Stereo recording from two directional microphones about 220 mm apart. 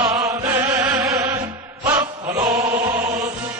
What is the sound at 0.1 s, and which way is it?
Music, 10° right (ahead or behind).